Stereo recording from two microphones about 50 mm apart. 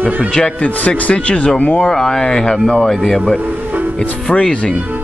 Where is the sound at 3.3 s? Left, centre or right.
Right.